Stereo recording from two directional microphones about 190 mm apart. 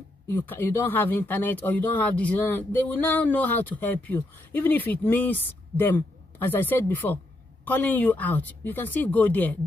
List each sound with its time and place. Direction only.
0.3 s speech: 10° left (ahead or behind)